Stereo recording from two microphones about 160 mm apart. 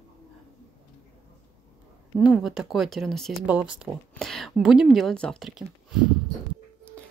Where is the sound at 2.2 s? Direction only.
5° right (ahead or behind).